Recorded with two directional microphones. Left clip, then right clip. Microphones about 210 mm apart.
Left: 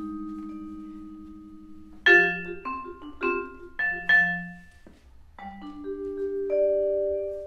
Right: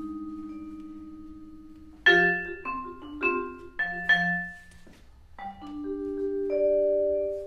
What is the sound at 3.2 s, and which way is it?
Music, 10° left (ahead or behind).